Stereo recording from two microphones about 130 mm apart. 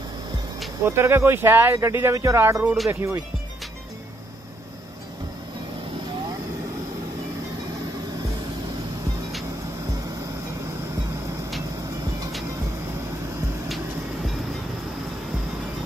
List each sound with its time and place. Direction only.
0.8 s speech: 20° right (ahead or behind)